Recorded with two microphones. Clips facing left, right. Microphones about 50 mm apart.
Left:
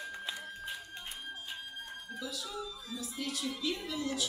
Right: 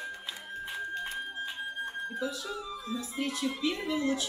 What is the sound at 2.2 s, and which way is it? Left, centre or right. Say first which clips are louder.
Speech: right 2 dB; right.